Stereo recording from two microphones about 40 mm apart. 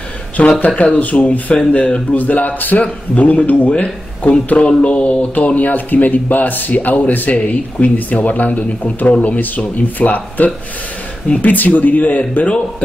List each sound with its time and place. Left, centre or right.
0.7 s speech: left
2.8 s speech: left